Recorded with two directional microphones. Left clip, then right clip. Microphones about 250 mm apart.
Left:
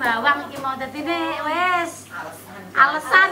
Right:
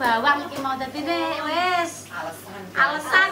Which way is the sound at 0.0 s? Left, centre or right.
Centre.